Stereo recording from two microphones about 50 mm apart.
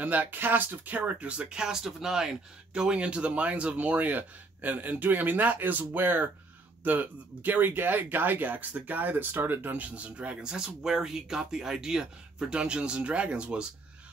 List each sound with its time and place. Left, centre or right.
0.0 s speech: right
1.5 s speech: centre